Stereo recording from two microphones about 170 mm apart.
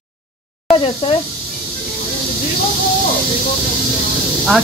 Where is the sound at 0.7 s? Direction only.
30° left (ahead or behind).